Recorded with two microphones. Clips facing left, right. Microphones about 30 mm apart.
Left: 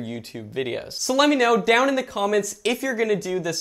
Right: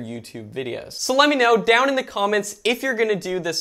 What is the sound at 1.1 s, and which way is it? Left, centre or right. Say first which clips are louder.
Speech: right 2 dB; right.